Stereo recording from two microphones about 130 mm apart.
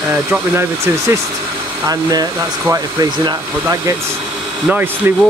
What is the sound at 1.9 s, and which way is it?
Speech, 30° right (ahead or behind).